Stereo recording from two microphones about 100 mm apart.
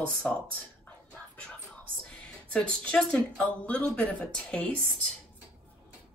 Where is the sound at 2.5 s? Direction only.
10° left (ahead or behind).